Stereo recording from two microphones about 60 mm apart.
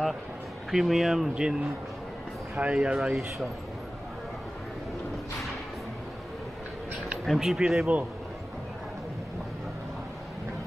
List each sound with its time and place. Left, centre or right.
0.7 s speech: centre
1.3 s speech: centre
7.2 s speech: centre